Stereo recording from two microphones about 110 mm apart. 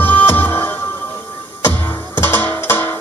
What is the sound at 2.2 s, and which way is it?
Music, 20° left (ahead or behind).